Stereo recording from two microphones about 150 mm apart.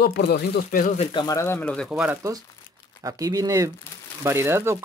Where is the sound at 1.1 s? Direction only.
25° left (ahead or behind).